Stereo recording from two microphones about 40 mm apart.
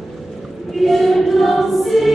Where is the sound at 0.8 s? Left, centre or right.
Centre.